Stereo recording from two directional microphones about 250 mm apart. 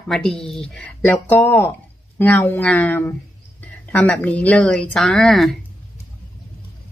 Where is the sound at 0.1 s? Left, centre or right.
Centre.